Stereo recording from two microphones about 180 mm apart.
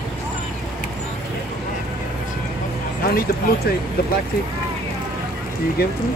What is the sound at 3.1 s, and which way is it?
Speech, 55° left (ahead or behind).